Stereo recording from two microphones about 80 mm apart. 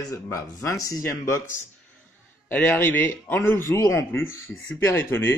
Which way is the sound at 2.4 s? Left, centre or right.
Left.